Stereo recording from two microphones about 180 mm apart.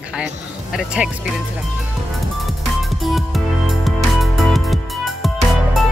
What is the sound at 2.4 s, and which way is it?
Music, centre (ahead or behind).